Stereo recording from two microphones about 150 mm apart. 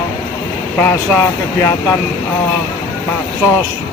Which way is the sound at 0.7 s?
15° left (ahead or behind).